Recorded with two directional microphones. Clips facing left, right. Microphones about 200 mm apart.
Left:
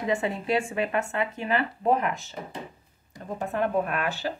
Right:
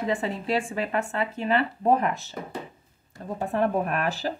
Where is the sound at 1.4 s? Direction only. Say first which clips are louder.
Right 4 dB; 30° right (ahead or behind).